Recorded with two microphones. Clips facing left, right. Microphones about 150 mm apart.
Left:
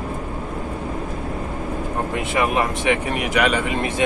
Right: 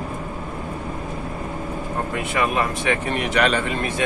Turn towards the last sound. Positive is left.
turn(degrees=20)  # may be behind; listen again after turning